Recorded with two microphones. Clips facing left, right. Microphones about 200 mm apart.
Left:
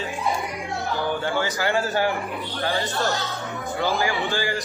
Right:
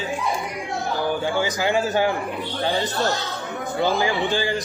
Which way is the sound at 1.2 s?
15° right (ahead or behind).